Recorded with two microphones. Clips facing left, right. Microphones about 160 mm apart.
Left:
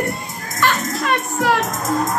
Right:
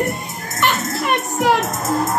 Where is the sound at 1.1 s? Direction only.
20° right (ahead or behind).